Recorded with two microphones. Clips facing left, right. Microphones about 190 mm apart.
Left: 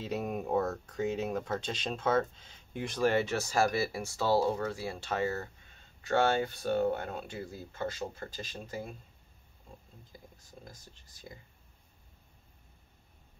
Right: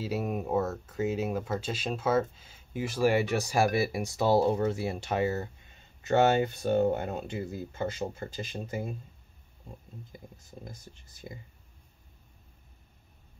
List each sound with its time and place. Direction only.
0.0 s speech: 5° right (ahead or behind); by 8.9 s 20° right (ahead or behind)
10.1 s speech: 20° right (ahead or behind)